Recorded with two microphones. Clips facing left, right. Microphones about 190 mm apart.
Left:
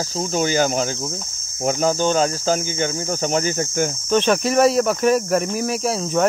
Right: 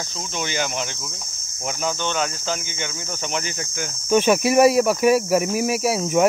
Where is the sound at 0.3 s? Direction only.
40° left (ahead or behind).